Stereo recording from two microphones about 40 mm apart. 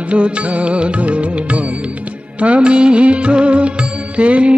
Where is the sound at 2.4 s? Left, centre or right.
Right.